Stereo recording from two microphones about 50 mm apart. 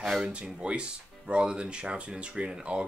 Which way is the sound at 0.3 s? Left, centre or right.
Centre.